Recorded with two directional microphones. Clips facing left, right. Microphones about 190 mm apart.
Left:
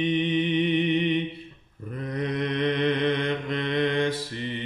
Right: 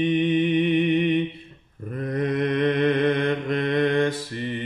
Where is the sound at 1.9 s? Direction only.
50° right (ahead or behind).